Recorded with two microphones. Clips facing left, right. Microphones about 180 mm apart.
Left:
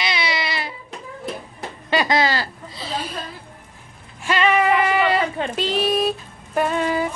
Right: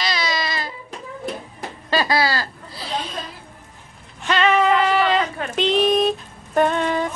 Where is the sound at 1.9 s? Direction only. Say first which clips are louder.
Left 1 dB; 20° left (ahead or behind).